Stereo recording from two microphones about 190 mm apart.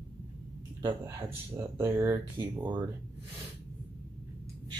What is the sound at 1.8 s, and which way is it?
Speech, 15° right (ahead or behind).